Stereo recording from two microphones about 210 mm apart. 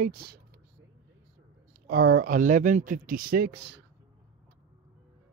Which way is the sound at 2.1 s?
40° right (ahead or behind).